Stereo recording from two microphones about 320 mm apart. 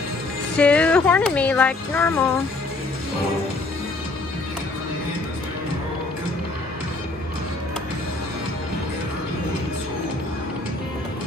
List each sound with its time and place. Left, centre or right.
0.6 s speech: centre